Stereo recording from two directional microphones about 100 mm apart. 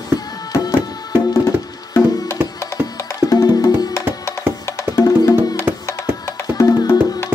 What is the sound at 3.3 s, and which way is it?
Music, 35° left (ahead or behind).